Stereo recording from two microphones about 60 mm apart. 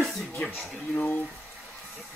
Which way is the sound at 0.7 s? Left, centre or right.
Centre.